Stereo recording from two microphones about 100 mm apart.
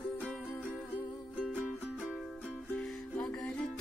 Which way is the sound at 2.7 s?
5° left (ahead or behind).